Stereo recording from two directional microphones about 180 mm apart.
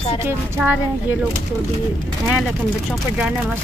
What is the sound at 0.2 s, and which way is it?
Speech, 10° right (ahead or behind).